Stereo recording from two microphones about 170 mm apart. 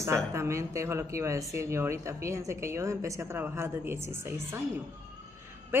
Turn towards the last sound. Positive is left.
turn(degrees=-15)  # may be behind; listen again after turning